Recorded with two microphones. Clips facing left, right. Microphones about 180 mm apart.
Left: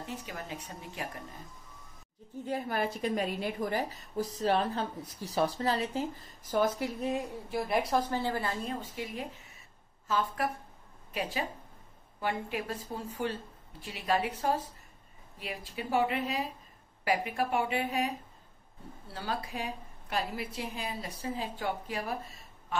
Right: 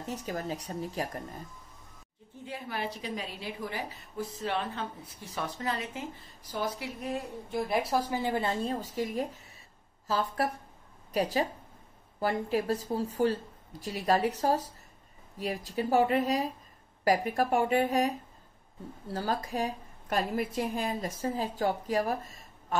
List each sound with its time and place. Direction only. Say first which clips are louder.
0.0 s speech: right 5 dB; 40° right (ahead or behind)
2.4 s a woman's voice: left 4 dB; 45° left (ahead or behind)
6.5 s speech: left 5 dB; 45° left (ahead or behind)
7.5 s a woman's voice: even; centre (ahead or behind)
8.1 s a woman's voice: right 2 dB; 15° right (ahead or behind)
8.9 s speech: right 6 dB; 40° right (ahead or behind)
15.3 s a woman's voice: right 7 dB; 40° right (ahead or behind)